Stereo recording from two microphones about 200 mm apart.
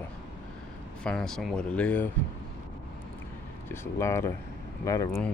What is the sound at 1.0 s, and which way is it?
Speech, 5° left (ahead or behind).